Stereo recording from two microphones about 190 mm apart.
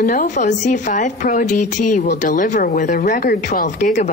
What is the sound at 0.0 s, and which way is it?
A woman's voice, 50° left (ahead or behind).